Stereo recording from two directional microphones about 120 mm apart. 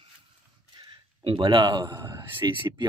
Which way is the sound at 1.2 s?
45° right (ahead or behind).